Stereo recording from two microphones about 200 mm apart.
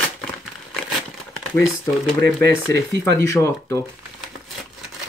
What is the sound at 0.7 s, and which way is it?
Crumpling, centre (ahead or behind).